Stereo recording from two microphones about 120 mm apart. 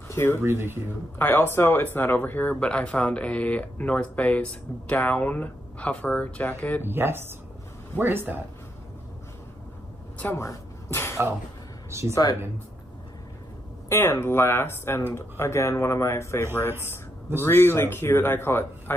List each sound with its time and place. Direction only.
0.1 s speech: 20° left (ahead or behind)
0.4 s speech: 20° right (ahead or behind)
1.1 s speech: 20° left (ahead or behind)
6.8 s speech: 20° right (ahead or behind)
10.1 s a sound: 20° left (ahead or behind)
12.1 s speech: 35° left (ahead or behind)
13.8 s speech: 20° left (ahead or behind)
17.5 s speech: 20° left (ahead or behind)